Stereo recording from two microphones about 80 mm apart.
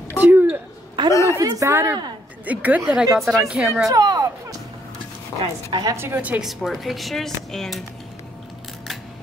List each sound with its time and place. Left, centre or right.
0.2 s a sound: right
1.1 s a woman's voice: left
1.6 s speech: right
2.4 s a woman's voice: centre
2.9 s speech: centre
3.8 s speech: right
5.4 s a woman's voice: right
5.9 s a woman's voice: right
6.4 s speech: centre